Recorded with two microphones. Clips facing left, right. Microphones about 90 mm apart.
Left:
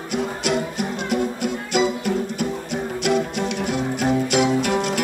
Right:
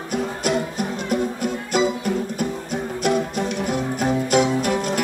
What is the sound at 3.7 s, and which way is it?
Music, 40° right (ahead or behind).